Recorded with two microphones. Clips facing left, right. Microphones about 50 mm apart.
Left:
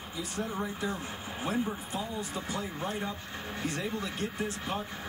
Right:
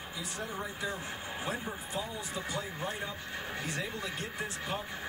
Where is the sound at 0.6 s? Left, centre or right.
Right.